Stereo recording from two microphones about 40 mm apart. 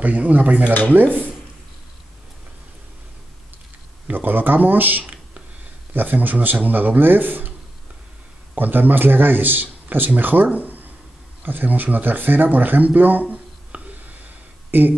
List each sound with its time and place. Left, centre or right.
0.0 s speech: right
0.9 s speech: right
4.1 s speech: right
8.5 s speech: right
10.5 s a sound: right
11.4 s speech: right
14.7 s speech: right